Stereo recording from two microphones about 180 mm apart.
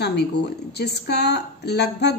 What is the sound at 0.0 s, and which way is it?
A woman's voice, 65° left (ahead or behind).